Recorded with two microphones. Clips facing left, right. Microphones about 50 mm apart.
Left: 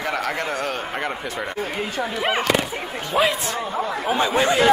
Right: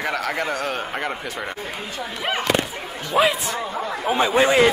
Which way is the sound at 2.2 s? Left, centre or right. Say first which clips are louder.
Left 2 dB; left.